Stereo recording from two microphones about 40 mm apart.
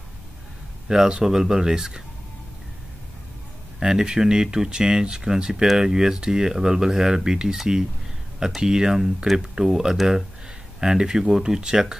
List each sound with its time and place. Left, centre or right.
0.8 s speech: centre
3.8 s speech: centre
8.5 s speech: centre